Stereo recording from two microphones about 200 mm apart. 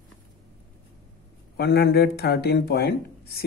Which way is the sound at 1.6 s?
55° left (ahead or behind).